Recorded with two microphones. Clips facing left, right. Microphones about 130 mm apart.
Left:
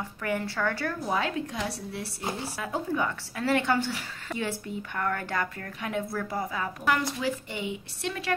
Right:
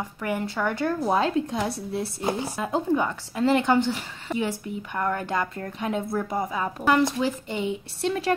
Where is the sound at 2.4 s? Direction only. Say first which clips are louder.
Right 5 dB; 20° right (ahead or behind).